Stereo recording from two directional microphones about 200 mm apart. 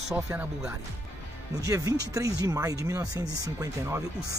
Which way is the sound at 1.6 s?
15° right (ahead or behind).